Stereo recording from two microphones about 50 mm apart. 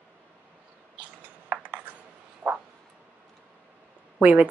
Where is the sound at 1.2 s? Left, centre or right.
Right.